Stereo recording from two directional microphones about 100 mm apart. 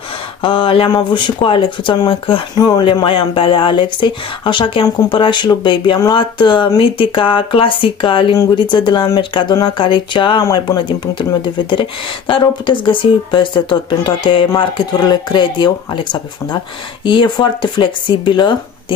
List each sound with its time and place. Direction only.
0.4 s speech: 65° left (ahead or behind)
0.9 s speech: 55° left (ahead or behind)
2.5 s speech: 45° left (ahead or behind)
2.8 s speech: 60° left (ahead or behind)
10.4 s speech: 35° left (ahead or behind)
11.1 s speech: 55° left (ahead or behind)
14.6 s speech: 45° left (ahead or behind)